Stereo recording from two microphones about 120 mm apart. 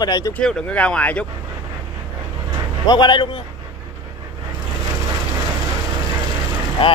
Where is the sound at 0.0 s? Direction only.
30° left (ahead or behind).